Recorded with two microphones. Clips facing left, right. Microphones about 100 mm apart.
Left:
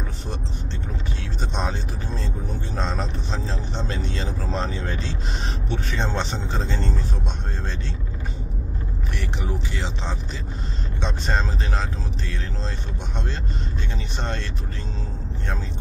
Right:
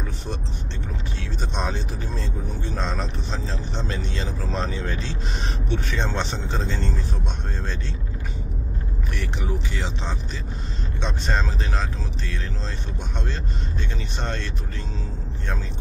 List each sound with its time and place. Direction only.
1.4 s vehicle: 30° left (ahead or behind)
2.7 s speech: 30° left (ahead or behind)
9.1 s speech: 30° left (ahead or behind)
14.1 s speech: 30° left (ahead or behind)